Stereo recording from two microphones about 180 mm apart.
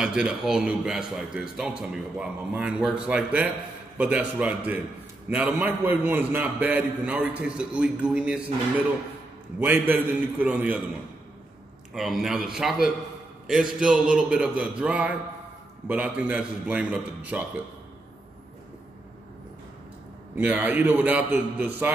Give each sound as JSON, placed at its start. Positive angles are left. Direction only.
{"t": 0.0, "sound": "a man's voice", "side_deg": -5}
{"t": 9.6, "sound": "a man's voice", "side_deg": -10}
{"t": 11.9, "sound": "a man's voice", "side_deg": 0}
{"t": 20.3, "sound": "a man's voice", "side_deg": -10}